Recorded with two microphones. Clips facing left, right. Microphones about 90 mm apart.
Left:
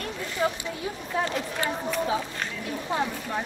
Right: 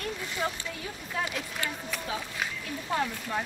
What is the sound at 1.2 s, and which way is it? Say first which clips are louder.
Speech: left 5 dB; 25° left (ahead or behind).